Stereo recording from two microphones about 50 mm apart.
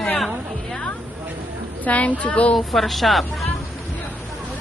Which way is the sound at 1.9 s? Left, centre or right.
Left.